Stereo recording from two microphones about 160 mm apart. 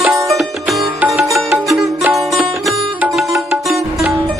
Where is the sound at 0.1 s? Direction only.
20° right (ahead or behind).